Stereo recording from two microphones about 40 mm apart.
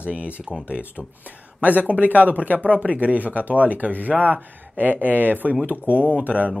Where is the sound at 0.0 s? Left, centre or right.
Right.